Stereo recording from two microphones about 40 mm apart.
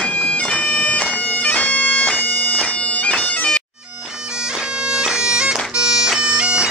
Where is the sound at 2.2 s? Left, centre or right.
Left.